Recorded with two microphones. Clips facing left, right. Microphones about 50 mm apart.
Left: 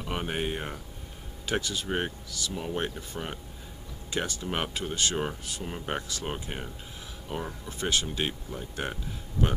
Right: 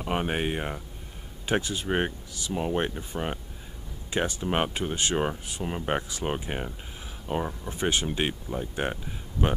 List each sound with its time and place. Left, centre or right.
0.0 s speech: centre